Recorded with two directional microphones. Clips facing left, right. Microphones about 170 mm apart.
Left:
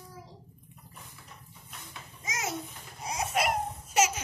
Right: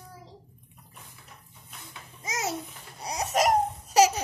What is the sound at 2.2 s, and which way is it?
Babbling, 35° right (ahead or behind).